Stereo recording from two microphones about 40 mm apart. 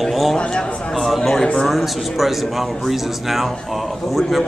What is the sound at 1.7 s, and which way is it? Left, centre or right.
A man's voice, centre.